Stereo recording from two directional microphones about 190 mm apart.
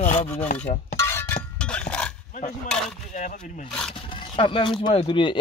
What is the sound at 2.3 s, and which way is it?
Speech, 40° left (ahead or behind).